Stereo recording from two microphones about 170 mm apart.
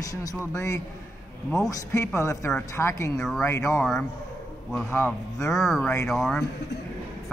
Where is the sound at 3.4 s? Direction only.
20° left (ahead or behind).